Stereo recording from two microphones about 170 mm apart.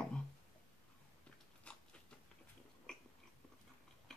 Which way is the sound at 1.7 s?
5° left (ahead or behind).